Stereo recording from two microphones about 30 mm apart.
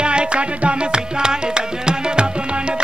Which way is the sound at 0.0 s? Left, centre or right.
Right.